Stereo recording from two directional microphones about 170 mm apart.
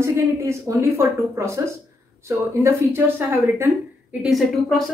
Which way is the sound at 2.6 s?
15° right (ahead or behind).